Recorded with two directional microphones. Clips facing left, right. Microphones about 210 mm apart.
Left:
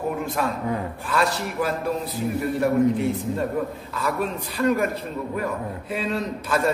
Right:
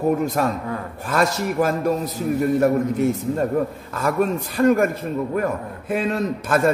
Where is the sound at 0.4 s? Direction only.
45° right (ahead or behind).